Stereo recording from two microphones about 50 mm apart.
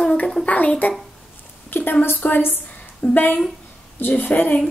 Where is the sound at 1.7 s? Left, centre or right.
Left.